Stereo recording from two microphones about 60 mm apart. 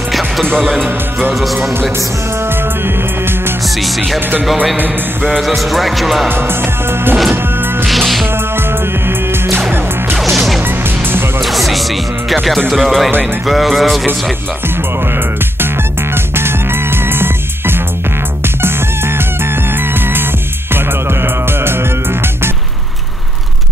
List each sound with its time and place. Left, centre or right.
0.1 s music: centre
2.8 s music: right
5.6 s music: centre
6.2 s music: right
7.8 s music: centre
8.5 s music: right
10.1 s music: centre
11.1 s music: right
11.4 s music: centre
16.3 s music: right